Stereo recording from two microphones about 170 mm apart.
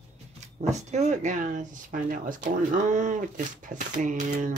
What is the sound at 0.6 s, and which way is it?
Speech, 40° right (ahead or behind).